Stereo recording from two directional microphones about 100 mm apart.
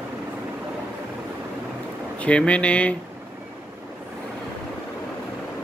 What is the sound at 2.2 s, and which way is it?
Speech, 10° left (ahead or behind).